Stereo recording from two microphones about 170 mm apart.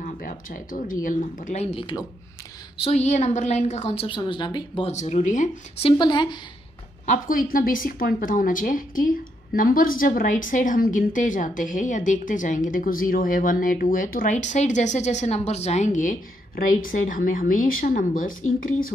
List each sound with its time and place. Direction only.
0.0 s a woman's voice: 50° left (ahead or behind); by 4.9 s 30° left (ahead or behind)
4.9 s a woman's voice: 40° left (ahead or behind)
5.9 s speech: 25° left (ahead or behind)
7.1 s a woman's voice: 55° left (ahead or behind)